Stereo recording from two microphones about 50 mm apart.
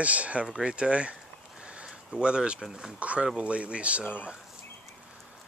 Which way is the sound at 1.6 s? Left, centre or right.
Right.